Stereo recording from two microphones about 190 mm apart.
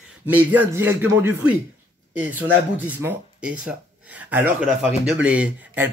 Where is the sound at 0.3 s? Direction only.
10° right (ahead or behind).